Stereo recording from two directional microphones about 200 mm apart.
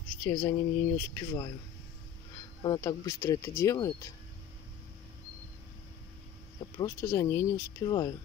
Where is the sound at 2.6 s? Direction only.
20° left (ahead or behind).